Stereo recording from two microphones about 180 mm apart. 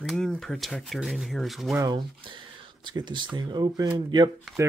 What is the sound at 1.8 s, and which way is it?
Speech, 25° right (ahead or behind).